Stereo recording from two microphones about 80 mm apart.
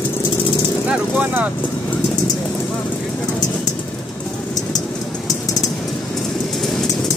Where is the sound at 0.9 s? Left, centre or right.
Centre.